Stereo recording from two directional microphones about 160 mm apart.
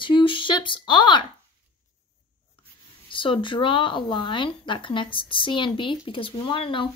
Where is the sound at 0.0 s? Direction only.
30° left (ahead or behind).